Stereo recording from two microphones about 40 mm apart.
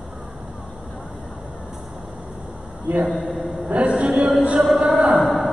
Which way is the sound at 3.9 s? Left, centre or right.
Centre.